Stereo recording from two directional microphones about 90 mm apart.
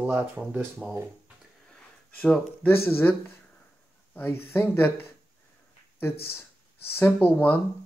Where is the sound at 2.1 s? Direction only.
10° left (ahead or behind).